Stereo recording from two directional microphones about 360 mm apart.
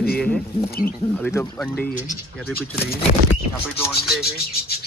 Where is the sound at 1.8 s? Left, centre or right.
Left.